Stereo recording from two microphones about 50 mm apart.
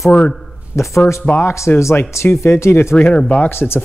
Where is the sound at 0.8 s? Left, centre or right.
Left.